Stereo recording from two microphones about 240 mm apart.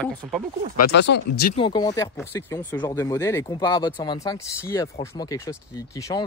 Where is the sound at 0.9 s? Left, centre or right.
Left.